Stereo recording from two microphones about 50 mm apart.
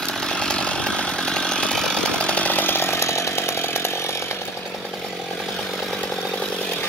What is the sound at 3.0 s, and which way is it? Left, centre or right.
Chainsaw, left.